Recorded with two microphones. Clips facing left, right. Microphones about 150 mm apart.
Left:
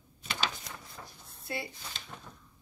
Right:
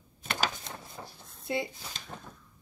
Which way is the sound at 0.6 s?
25° right (ahead or behind).